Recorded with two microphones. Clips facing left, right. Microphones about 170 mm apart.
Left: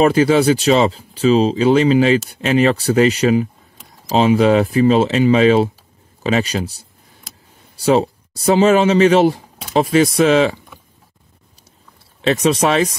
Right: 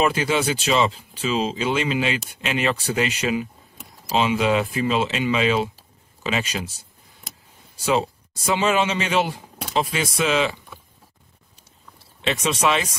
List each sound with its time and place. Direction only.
0.0 s speech: 35° left (ahead or behind)
7.7 s speech: 40° left (ahead or behind)
12.2 s speech: 40° left (ahead or behind)